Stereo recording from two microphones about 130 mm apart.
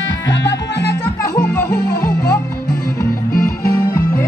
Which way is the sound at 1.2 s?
20° left (ahead or behind).